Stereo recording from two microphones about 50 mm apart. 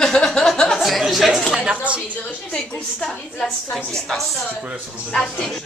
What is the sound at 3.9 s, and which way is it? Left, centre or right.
A woman's voice, centre.